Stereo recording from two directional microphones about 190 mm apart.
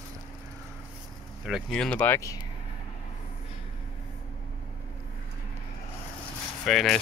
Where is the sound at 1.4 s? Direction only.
Centre (ahead or behind).